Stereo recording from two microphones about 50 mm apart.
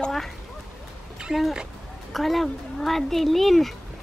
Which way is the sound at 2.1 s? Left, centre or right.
Centre.